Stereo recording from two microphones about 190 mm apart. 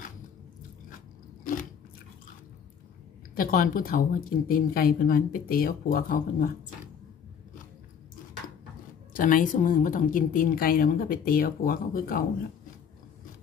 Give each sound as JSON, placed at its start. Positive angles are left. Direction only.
{"t": 0.8, "sound": "biting", "side_deg": 45}
{"t": 3.3, "sound": "a woman's voice", "side_deg": 45}
{"t": 9.1, "sound": "a woman's voice", "side_deg": 45}